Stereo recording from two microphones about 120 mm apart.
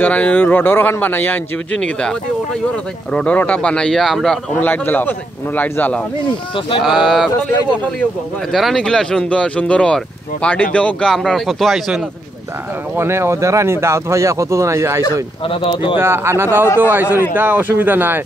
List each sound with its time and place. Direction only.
0.0 s speech: 15° left (ahead or behind)
4.6 s speech: 15° left (ahead or behind)
6.8 s a sound: centre (ahead or behind)
8.0 s speech: centre (ahead or behind)
12.9 s speech: 20° right (ahead or behind)
15.4 s speech: 50° left (ahead or behind)
16.0 s speech: 20° right (ahead or behind)